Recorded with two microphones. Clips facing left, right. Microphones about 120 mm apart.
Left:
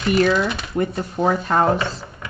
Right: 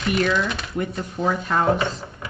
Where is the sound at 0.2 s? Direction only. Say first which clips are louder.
Left 4 dB; 35° left (ahead or behind).